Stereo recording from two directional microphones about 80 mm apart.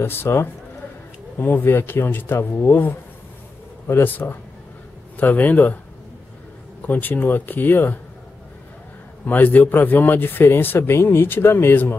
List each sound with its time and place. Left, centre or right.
0.0 s speech: left
6.9 s speech: left
9.2 s speech: left